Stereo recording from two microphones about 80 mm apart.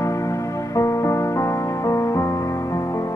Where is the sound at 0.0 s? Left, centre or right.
Left.